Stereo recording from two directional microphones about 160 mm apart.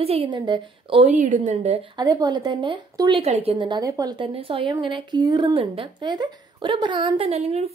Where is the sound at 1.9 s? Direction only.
25° right (ahead or behind).